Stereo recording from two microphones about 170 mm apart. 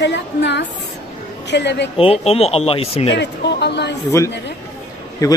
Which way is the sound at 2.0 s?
35° left (ahead or behind).